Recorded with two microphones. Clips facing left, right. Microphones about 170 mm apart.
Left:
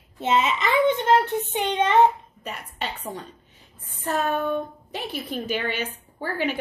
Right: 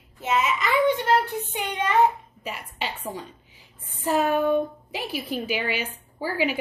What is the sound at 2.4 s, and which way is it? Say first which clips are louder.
A woman's voice: even; 5° right (ahead or behind).